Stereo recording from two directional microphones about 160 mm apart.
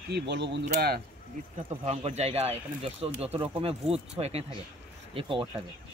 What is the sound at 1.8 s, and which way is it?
Speech, 40° right (ahead or behind).